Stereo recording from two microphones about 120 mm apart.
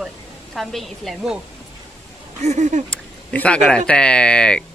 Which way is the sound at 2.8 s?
10° left (ahead or behind).